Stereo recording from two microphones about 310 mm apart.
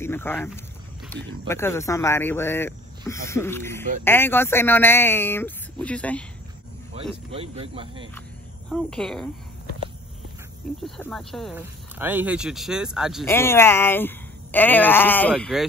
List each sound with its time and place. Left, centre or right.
0.0 s speech: centre
1.5 s speech: centre
7.3 s speech: centre
8.6 s speech: centre
10.8 s speech: centre